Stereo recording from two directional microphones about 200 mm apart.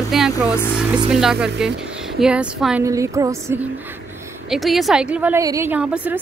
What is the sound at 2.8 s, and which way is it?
Speech, 15° right (ahead or behind).